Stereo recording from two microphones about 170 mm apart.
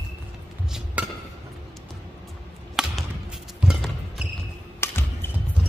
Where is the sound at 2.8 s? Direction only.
5° right (ahead or behind).